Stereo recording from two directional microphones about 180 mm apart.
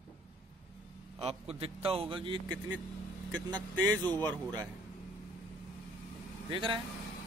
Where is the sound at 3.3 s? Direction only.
10° left (ahead or behind).